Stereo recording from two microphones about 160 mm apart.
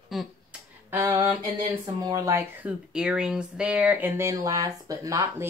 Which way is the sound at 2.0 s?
20° right (ahead or behind).